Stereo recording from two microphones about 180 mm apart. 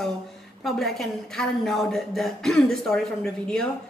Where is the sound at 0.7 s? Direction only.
Centre (ahead or behind).